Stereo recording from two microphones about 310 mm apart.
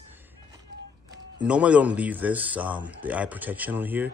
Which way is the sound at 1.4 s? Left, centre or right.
Centre.